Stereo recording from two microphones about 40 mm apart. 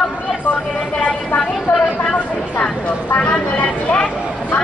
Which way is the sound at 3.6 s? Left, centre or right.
Left.